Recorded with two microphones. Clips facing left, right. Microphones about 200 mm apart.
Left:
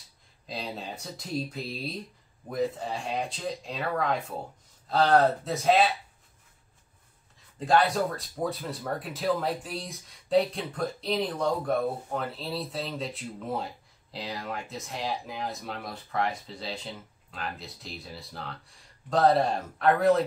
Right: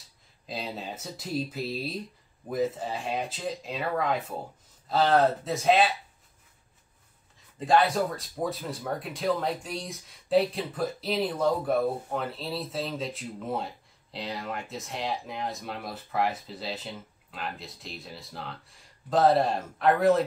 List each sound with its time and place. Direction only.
0.5 s speech: centre (ahead or behind)
7.5 s speech: centre (ahead or behind)